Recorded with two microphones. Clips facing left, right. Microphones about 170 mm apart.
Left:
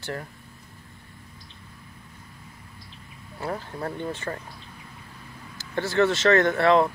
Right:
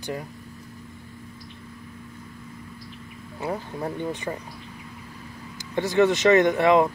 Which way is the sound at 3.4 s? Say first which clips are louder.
Right 2 dB; 15° right (ahead or behind).